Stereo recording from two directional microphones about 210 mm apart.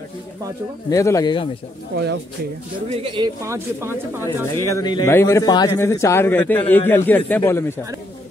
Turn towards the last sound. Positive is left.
turn(degrees=10)  # may be behind; listen again after turning